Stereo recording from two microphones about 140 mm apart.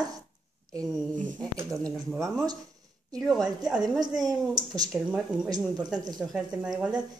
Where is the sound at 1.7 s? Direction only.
5° left (ahead or behind).